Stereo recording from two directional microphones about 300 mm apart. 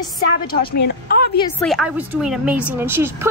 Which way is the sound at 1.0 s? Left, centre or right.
Left.